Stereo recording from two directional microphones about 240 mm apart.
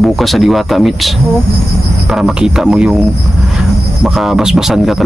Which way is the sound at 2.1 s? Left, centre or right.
Centre.